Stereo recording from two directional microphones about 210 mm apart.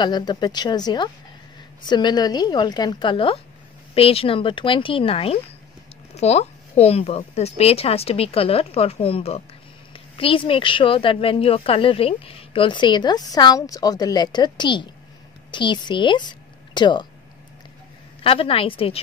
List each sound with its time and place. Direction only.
0.0 s a woman's voice: 20° left (ahead or behind)
18.2 s speech: 25° left (ahead or behind)